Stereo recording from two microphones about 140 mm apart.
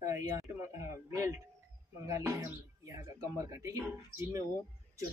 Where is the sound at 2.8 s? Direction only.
25° right (ahead or behind).